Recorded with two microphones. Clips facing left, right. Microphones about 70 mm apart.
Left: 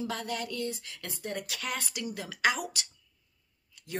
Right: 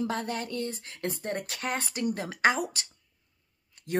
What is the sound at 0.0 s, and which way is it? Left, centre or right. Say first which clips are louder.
A woman's voice: right 3 dB; right.